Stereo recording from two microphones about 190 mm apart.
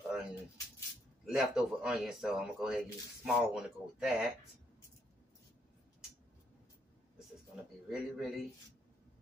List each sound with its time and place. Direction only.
0.1 s a sound: 5° right (ahead or behind)
1.2 s speech: centre (ahead or behind)
7.9 s speech: centre (ahead or behind)